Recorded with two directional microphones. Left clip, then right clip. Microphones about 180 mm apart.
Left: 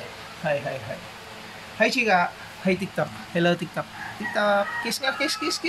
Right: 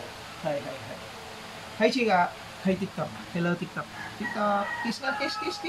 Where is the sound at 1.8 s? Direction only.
30° left (ahead or behind).